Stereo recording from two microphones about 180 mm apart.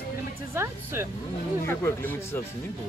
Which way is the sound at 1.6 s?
10° left (ahead or behind).